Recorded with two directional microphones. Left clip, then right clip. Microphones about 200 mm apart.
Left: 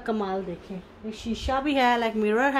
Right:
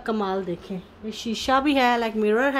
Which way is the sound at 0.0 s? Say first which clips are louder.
Right 2 dB; 10° right (ahead or behind).